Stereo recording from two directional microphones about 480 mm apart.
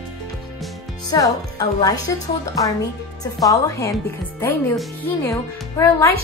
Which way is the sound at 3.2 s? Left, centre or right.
Centre.